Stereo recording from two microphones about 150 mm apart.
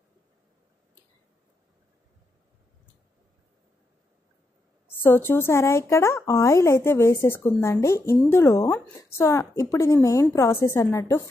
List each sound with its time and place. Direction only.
4.8 s a woman's voice: 15° left (ahead or behind)